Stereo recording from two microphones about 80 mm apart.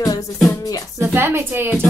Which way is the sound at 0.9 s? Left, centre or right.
Right.